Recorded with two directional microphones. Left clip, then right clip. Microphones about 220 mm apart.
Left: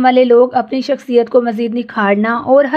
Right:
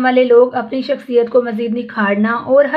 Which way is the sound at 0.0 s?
45° left (ahead or behind).